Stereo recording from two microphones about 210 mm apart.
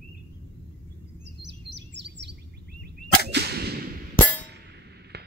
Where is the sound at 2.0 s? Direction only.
55° right (ahead or behind).